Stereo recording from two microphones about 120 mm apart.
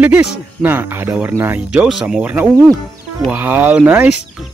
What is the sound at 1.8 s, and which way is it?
Speech, 5° right (ahead or behind).